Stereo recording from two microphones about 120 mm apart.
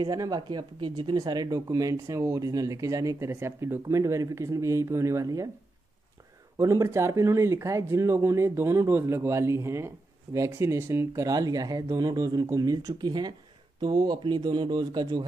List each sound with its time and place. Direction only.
0.0 s speech: 30° right (ahead or behind)
6.6 s speech: 25° right (ahead or behind)